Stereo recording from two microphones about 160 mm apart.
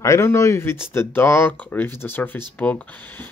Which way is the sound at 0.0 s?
20° left (ahead or behind).